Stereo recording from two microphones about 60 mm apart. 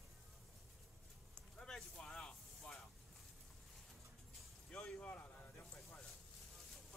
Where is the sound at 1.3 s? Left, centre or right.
Centre.